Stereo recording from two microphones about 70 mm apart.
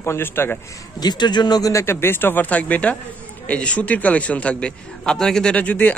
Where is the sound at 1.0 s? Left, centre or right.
Left.